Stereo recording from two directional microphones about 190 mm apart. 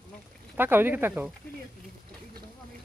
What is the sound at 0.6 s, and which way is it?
Speech, 10° right (ahead or behind).